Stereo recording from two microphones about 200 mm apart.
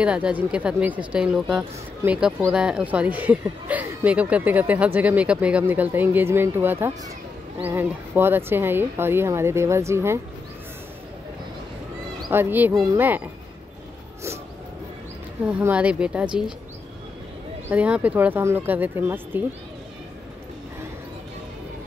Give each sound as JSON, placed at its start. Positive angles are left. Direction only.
{"t": 0.0, "sound": "speech", "side_deg": -5}
{"t": 12.2, "sound": "speech", "side_deg": -10}
{"t": 15.4, "sound": "speech", "side_deg": -5}
{"t": 17.6, "sound": "speech", "side_deg": -5}